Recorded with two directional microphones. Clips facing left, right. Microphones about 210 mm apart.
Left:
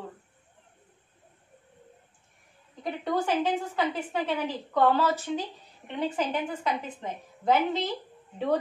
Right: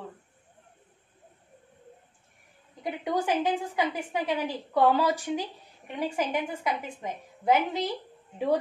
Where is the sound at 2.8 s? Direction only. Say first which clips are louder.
Even; 10° right (ahead or behind).